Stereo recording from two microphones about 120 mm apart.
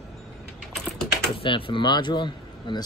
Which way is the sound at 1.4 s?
45° left (ahead or behind).